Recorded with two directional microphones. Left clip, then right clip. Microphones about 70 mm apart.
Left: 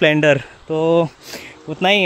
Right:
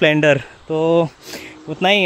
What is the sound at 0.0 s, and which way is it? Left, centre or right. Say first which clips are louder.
Speech: even; centre.